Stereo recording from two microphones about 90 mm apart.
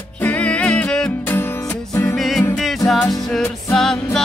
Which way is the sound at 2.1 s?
Centre (ahead or behind).